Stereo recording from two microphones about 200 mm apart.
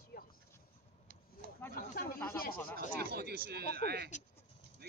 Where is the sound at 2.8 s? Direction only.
50° right (ahead or behind).